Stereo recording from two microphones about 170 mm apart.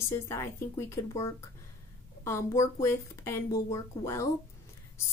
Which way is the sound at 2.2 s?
15° left (ahead or behind).